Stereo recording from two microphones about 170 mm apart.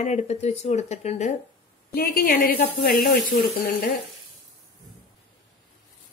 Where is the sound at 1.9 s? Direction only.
60° left (ahead or behind).